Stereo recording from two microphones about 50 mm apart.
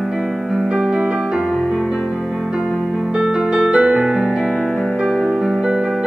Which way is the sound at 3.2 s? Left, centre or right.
Centre.